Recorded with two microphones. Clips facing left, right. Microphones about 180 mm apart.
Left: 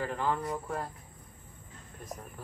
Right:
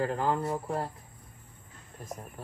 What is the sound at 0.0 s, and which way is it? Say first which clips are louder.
Speech: right 3 dB; 40° right (ahead or behind).